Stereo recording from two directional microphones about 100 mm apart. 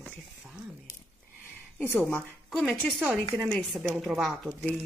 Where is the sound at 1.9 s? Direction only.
20° left (ahead or behind).